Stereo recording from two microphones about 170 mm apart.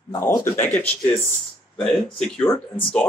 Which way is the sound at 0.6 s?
10° left (ahead or behind).